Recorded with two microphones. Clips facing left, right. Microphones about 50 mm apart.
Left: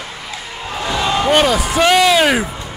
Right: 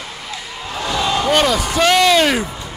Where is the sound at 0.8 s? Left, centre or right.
Centre.